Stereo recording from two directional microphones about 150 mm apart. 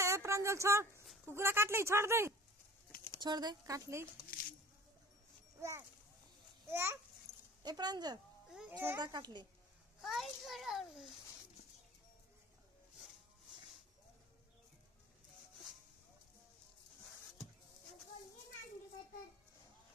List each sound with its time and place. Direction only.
0.0 s a sound: 20° right (ahead or behind)
1.2 s speech: 15° right (ahead or behind)
3.2 s speech: 30° right (ahead or behind)
5.6 s speech: 20° right (ahead or behind)
7.3 s dog: 45° left (ahead or behind)
7.6 s speech: 25° right (ahead or behind)
8.5 s a child's voice: 5° right (ahead or behind)
8.7 s speech: 15° right (ahead or behind)
9.0 s speech: 25° right (ahead or behind)
10.0 s a child's voice: centre (ahead or behind)